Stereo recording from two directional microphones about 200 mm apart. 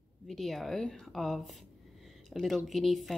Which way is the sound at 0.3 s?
Centre (ahead or behind).